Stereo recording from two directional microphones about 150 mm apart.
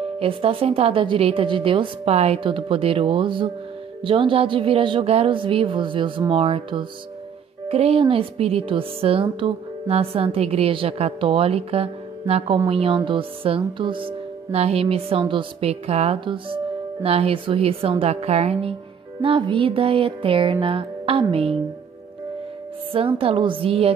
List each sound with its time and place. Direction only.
0.2 s a woman's voice: 40° right (ahead or behind)
22.9 s a woman's voice: 35° right (ahead or behind)